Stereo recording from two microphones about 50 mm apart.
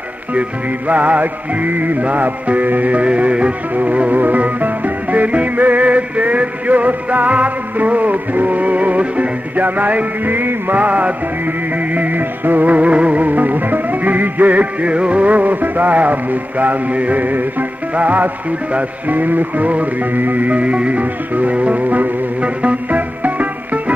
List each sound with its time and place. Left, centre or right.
0.3 s music: right